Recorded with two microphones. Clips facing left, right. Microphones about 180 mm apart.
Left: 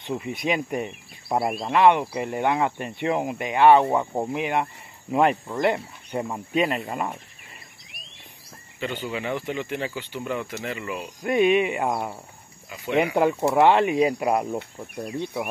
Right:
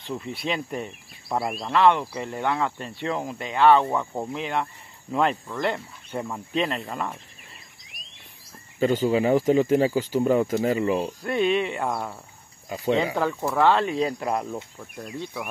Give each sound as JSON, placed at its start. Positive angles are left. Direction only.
{"t": 0.0, "sound": "speech", "side_deg": 15}
{"t": 8.7, "sound": "speech", "side_deg": -40}
{"t": 11.2, "sound": "speech", "side_deg": 10}
{"t": 12.6, "sound": "speech", "side_deg": -40}
{"t": 12.9, "sound": "speech", "side_deg": 15}